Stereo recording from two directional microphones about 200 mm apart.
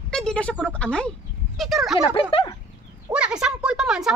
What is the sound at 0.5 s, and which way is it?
Speech, 5° left (ahead or behind).